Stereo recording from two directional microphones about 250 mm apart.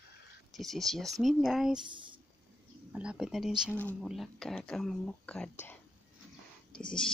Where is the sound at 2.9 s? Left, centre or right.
Centre.